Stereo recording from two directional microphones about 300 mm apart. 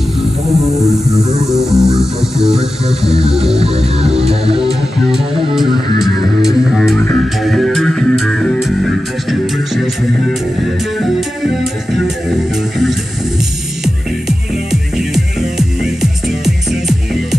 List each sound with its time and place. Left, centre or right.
0.5 s music: centre
3.5 s music: right
6.0 s music: centre
11.0 s music: centre
14.7 s music: centre